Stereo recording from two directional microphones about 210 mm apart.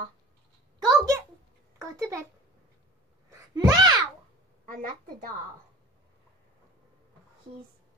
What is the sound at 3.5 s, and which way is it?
Speech, 20° right (ahead or behind).